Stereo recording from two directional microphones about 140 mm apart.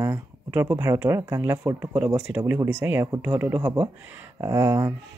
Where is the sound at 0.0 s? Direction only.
15° right (ahead or behind).